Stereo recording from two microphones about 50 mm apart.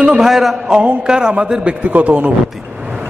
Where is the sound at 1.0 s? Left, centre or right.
Centre.